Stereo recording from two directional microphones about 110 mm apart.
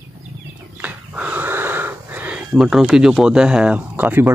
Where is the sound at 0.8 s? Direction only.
15° right (ahead or behind).